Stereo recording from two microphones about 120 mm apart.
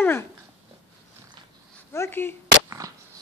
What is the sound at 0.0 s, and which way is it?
Speech, 20° left (ahead or behind).